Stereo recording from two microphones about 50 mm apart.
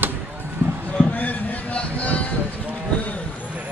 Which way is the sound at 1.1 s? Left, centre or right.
Left.